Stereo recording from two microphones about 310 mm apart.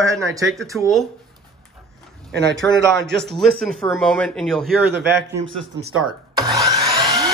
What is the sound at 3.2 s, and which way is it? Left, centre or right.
Speech, centre.